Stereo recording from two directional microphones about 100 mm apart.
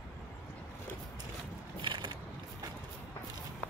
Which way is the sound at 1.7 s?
50° right (ahead or behind).